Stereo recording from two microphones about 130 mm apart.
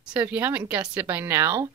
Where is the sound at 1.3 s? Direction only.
20° right (ahead or behind).